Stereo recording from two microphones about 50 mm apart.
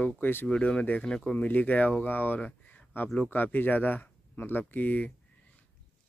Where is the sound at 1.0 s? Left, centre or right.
Centre.